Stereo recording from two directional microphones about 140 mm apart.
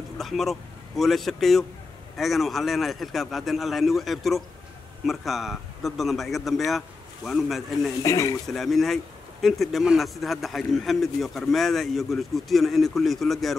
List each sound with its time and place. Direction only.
0.2 s speech: centre (ahead or behind)
8.0 s speech: 25° left (ahead or behind)
8.5 s speech: centre (ahead or behind)